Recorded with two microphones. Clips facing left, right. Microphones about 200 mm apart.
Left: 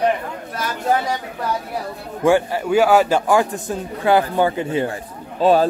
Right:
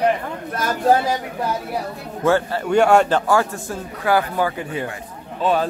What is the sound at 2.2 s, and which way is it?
A man's voice, 15° left (ahead or behind).